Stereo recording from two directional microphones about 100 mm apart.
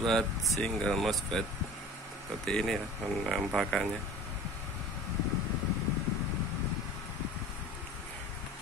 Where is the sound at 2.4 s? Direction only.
5° left (ahead or behind).